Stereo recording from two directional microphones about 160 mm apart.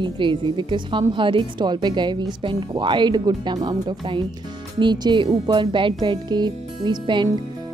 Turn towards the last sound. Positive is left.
turn(degrees=-30)  # may be behind; listen again after turning